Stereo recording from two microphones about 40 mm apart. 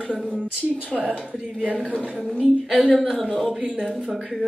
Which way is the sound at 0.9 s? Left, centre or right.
Right.